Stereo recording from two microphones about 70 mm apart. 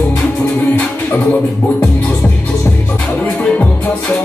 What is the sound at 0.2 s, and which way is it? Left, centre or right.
Music, left.